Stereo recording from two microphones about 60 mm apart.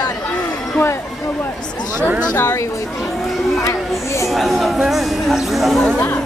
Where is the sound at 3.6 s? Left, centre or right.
Left.